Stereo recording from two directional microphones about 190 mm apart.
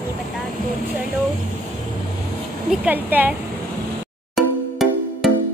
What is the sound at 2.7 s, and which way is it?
Music, 10° right (ahead or behind).